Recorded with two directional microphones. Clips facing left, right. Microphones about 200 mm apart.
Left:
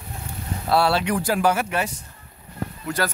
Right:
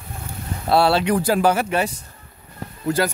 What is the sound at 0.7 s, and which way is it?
Speech, 30° right (ahead or behind).